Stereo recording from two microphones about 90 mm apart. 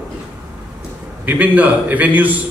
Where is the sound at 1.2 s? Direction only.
20° right (ahead or behind).